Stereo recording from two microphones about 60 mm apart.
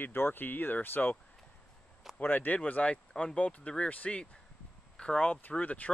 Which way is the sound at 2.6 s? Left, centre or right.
Left.